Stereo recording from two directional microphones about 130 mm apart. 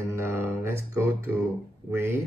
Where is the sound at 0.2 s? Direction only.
20° right (ahead or behind).